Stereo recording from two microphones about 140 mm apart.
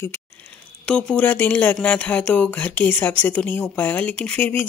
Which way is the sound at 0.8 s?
5° left (ahead or behind).